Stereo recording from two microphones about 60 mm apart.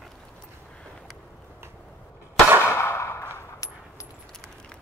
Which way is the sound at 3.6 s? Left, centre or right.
Left.